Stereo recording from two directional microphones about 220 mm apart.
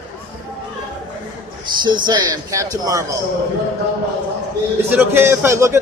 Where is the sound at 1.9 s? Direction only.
20° right (ahead or behind).